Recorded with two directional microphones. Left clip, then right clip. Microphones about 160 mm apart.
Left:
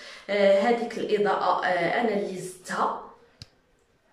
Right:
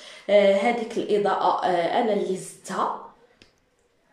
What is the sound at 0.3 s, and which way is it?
A woman's voice, 20° right (ahead or behind).